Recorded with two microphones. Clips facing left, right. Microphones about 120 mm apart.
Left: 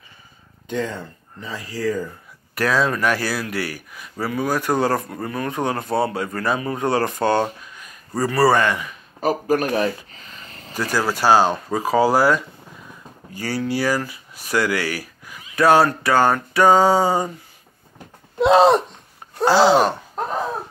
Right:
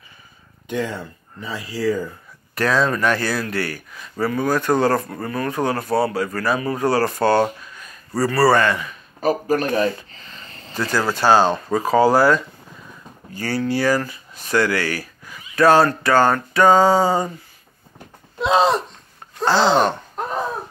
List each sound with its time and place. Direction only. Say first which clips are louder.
0.7 s speech: right 1 dB; 10° right (ahead or behind)
2.5 s speech: right 1 dB; 5° left (ahead or behind)
18.4 s a sound: left 4 dB; 65° left (ahead or behind)
19.4 s speech: left 2 dB; 10° left (ahead or behind)